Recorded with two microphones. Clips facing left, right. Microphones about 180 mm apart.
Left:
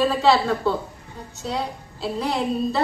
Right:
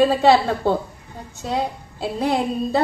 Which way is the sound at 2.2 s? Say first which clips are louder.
Right 2 dB; 55° right (ahead or behind).